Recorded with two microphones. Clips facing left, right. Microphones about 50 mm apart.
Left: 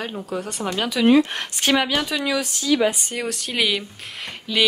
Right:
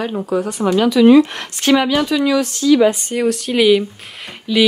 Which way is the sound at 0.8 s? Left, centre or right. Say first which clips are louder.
Right 7 dB; centre.